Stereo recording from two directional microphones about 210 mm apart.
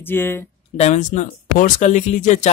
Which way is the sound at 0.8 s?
35° left (ahead or behind).